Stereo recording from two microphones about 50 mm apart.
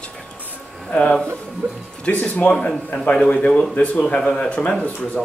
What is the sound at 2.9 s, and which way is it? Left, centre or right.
A man's voice, left.